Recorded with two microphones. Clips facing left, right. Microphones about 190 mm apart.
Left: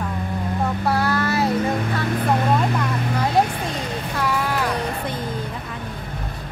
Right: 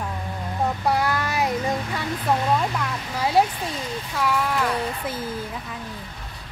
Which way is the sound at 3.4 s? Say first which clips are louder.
Left 3 dB; 60° left (ahead or behind).